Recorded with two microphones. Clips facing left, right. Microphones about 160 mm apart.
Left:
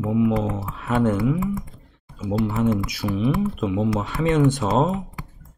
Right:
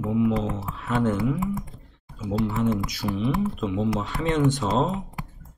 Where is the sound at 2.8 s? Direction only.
5° left (ahead or behind).